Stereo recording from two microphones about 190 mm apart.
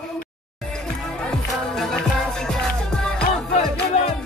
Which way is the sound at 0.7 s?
5° left (ahead or behind).